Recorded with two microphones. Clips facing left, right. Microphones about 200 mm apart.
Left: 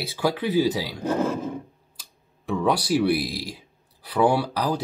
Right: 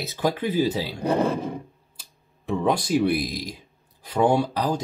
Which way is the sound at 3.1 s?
10° left (ahead or behind).